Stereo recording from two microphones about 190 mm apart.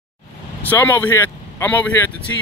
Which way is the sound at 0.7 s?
10° left (ahead or behind).